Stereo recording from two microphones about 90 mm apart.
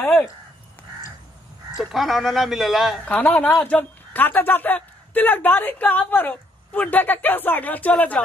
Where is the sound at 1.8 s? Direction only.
Centre (ahead or behind).